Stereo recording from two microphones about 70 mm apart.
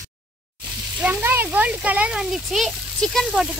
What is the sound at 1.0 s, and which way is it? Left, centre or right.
Speech, right.